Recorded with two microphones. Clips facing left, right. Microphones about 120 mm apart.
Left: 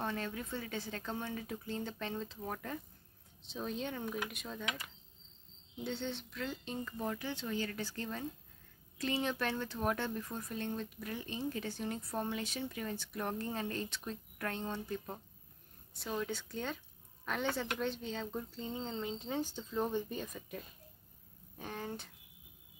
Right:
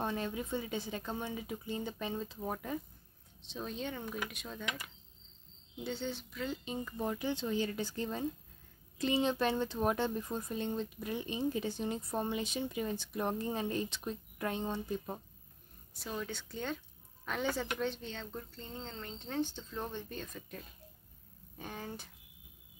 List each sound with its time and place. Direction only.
0.0 s a woman's voice: 15° right (ahead or behind)
3.4 s a woman's voice: centre (ahead or behind); by 15.1 s 15° right (ahead or behind)
15.9 s a woman's voice: centre (ahead or behind)